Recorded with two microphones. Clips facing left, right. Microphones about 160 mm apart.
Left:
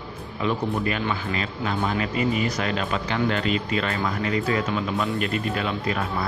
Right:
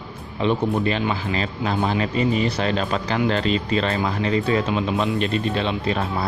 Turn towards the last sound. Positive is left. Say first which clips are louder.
# right 3 dB
turn(degrees=-25)  # may be behind; listen again after turning